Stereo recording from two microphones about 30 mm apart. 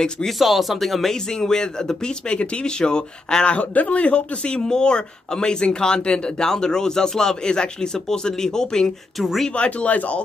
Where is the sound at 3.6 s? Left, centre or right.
Left.